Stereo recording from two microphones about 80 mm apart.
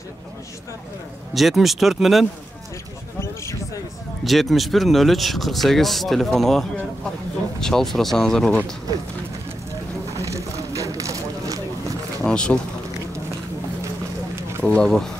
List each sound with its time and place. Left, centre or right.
1.3 s speech: centre
4.2 s speech: centre
7.6 s speech: centre
10.1 s a sound: right
12.2 s a sound: centre
14.6 s speech: centre